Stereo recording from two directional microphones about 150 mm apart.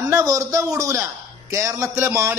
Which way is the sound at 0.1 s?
20° right (ahead or behind).